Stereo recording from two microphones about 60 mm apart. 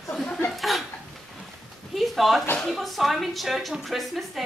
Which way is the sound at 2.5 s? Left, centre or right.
Centre.